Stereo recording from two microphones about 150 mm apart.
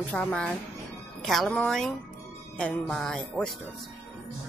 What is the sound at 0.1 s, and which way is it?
Speech, 10° left (ahead or behind).